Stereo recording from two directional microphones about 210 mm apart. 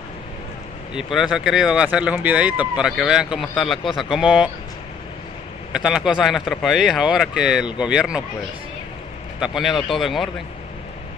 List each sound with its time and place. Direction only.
0.9 s speech: centre (ahead or behind)
3.8 s speech: 25° left (ahead or behind)
4.1 s speech: 5° right (ahead or behind)
5.7 s speech: 5° right (ahead or behind)
9.4 s speech: centre (ahead or behind)